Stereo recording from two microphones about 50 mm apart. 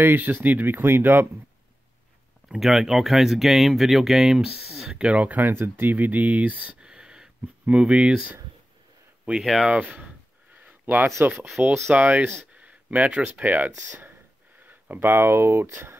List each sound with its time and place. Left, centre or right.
0.0 s speech: right
2.4 s speech: centre
4.9 s speech: right
5.4 s speech: right
6.8 s a sound: centre
7.6 s speech: right
9.4 s speech: centre
9.7 s a sound: right
11.6 s speech: right